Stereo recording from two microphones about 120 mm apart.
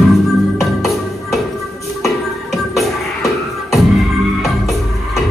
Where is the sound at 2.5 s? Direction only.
Centre (ahead or behind).